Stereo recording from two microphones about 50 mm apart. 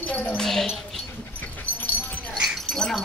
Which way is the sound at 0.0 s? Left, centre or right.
Left.